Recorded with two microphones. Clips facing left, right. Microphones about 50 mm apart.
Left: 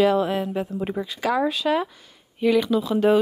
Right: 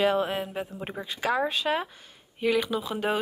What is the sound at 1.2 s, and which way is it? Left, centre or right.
Speech, right.